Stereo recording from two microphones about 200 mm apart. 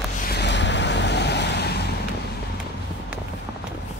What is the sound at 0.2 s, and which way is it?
Vehicle, 55° left (ahead or behind).